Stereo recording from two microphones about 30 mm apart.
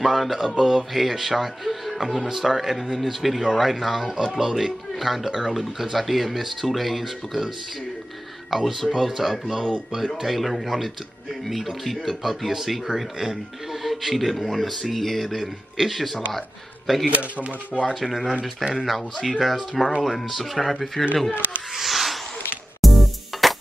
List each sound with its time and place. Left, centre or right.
0.0 s speech: centre
4.4 s speech: centre
17.1 s speech: right
18.0 s speech: centre
21.7 s a sound: centre
22.8 s music: centre